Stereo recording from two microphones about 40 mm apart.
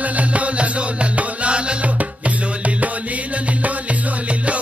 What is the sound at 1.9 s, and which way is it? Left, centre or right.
Music, right.